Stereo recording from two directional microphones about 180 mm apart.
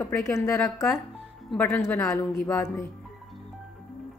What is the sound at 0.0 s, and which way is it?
A woman's voice, 15° left (ahead or behind).